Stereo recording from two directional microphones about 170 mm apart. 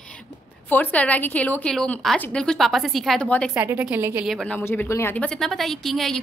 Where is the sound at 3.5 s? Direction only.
10° right (ahead or behind).